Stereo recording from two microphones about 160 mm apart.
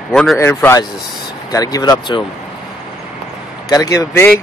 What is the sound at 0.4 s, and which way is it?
Speech, 15° left (ahead or behind).